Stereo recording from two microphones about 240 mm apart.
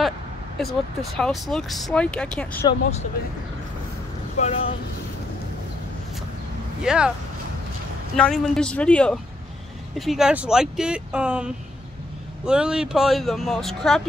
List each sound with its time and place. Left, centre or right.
0.6 s speech: centre
4.4 s speech: left
6.8 s speech: centre
8.2 s speech: centre